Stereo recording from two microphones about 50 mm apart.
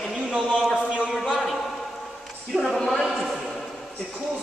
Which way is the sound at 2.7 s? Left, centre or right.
Centre.